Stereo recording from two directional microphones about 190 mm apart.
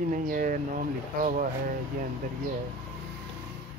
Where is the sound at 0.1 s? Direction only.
45° right (ahead or behind).